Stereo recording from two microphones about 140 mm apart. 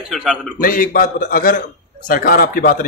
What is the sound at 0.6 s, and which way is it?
A man's voice, 85° left.